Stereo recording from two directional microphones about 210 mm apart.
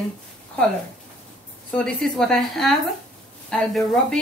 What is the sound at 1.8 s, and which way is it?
A woman's voice, 5° left (ahead or behind).